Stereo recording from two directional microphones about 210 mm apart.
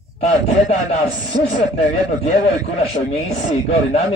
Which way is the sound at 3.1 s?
30° left (ahead or behind).